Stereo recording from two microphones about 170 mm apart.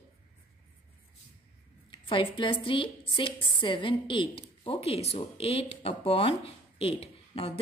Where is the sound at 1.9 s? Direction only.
30° left (ahead or behind).